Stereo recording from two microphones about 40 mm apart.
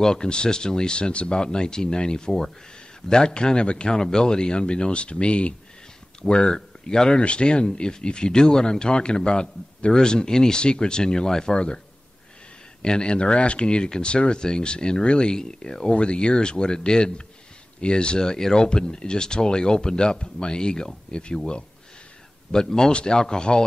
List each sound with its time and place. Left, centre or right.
0.0 s speech: centre
12.8 s speech: left
15.9 s speech: left
22.5 s a man's voice: centre